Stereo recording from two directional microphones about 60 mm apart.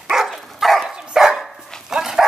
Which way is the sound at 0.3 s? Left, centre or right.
Centre.